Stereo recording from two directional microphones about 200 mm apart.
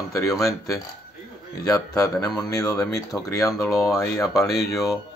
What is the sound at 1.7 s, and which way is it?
Mantra, 15° left (ahead or behind).